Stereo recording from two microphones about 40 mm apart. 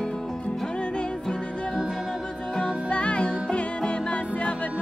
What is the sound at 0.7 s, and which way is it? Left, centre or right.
Music, left.